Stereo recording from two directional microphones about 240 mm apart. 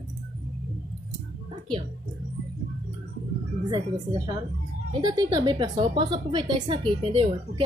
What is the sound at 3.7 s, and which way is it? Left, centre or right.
A woman's voice, centre.